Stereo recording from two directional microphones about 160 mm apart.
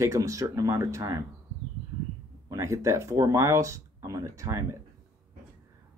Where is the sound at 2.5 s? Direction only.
20° right (ahead or behind).